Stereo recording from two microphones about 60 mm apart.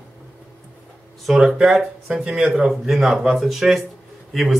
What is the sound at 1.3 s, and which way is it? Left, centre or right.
Speech, centre.